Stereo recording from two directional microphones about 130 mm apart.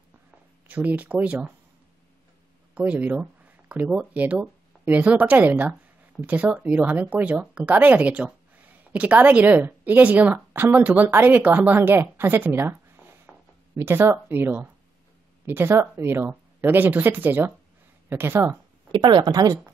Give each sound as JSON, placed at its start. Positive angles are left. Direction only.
{"t": 0.7, "sound": "speech", "side_deg": -10}
{"t": 2.7, "sound": "speech", "side_deg": -10}
{"t": 18.9, "sound": "speech", "side_deg": -40}